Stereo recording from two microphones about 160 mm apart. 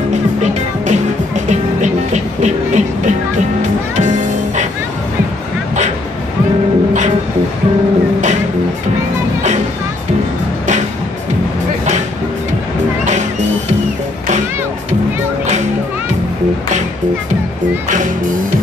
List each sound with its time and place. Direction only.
0.4 s music: 45° right (ahead or behind)